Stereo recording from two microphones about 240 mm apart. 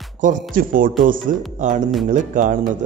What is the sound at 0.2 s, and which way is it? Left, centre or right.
Speech, right.